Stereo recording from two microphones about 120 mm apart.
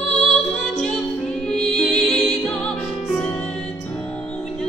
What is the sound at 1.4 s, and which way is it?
Music, 5° left (ahead or behind).